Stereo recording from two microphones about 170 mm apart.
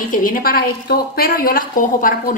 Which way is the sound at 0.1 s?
55° left (ahead or behind).